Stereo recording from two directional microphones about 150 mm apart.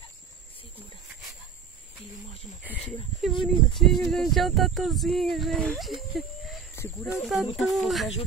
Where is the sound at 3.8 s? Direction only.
Centre (ahead or behind).